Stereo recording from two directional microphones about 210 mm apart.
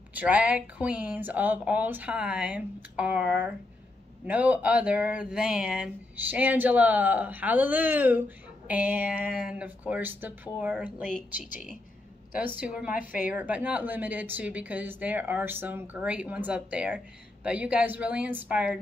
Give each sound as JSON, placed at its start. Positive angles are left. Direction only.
{"t": 0.1, "sound": "a woman's voice", "side_deg": -5}
{"t": 11.1, "sound": "speech", "side_deg": 40}
{"t": 12.5, "sound": "a woman's voice", "side_deg": -5}